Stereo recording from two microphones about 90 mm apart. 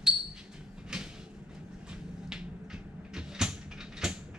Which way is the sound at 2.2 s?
5° right (ahead or behind).